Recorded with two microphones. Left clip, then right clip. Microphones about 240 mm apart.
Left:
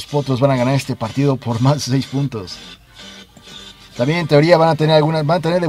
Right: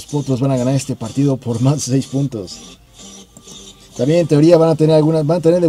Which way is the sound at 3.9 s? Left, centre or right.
Left.